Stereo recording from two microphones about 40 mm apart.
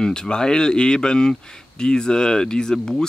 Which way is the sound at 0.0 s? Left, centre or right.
Centre.